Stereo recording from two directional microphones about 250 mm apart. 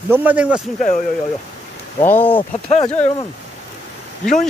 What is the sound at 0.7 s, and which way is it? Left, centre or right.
Speech, left.